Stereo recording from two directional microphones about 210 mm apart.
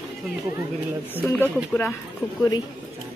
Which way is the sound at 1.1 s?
10° left (ahead or behind).